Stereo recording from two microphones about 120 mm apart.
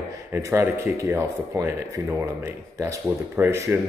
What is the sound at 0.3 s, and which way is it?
Speech, 20° right (ahead or behind).